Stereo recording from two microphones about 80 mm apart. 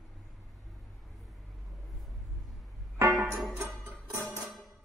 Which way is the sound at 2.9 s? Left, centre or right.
Right.